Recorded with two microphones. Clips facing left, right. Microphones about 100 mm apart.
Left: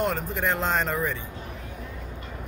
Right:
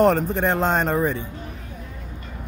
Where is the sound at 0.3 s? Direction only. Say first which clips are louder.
Right 5 dB; 30° right (ahead or behind).